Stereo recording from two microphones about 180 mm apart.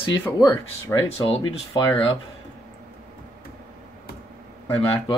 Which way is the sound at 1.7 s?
30° left (ahead or behind).